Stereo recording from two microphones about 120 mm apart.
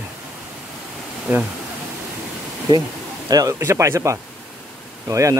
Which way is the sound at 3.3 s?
25° right (ahead or behind).